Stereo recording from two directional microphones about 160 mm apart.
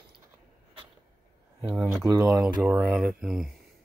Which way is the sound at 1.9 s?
15° right (ahead or behind).